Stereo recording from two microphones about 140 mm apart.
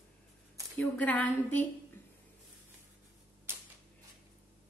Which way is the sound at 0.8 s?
10° left (ahead or behind).